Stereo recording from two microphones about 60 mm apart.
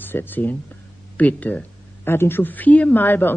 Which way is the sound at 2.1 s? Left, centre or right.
Left.